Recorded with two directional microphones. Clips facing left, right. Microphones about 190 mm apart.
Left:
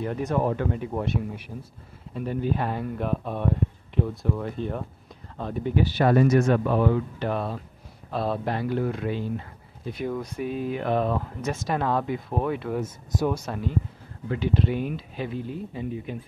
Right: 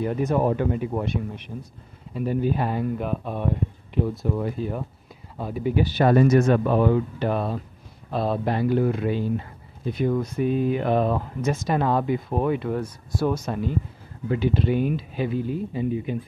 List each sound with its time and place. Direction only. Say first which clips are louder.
0.0 s speech: right 4 dB; 5° right (ahead or behind)
0.3 s speech: right 2 dB; 15° right (ahead or behind)
0.7 s speech: right 2 dB; centre (ahead or behind)
2.1 s speech: right 3 dB; 5° right (ahead or behind)
5.9 s speech: right 2 dB; 25° right (ahead or behind)
7.2 s speech: right 3 dB; 10° right (ahead or behind)
9.9 s speech: right 6 dB; 5° left (ahead or behind)
12.8 s speech: right 1 dB; 15° left (ahead or behind)
14.3 s speech: right 3 dB; 5° right (ahead or behind)